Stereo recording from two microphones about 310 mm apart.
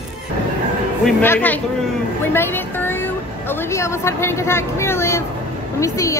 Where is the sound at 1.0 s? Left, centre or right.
Centre.